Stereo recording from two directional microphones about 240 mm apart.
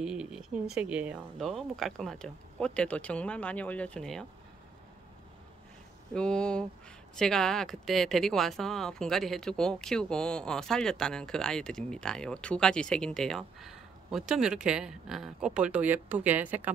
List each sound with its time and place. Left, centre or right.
0.0 s speech: centre
6.1 s speech: centre